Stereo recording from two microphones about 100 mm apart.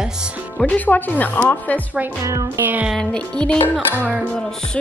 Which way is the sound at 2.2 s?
30° right (ahead or behind).